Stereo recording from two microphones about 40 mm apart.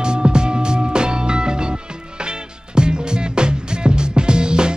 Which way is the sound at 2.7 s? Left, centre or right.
Right.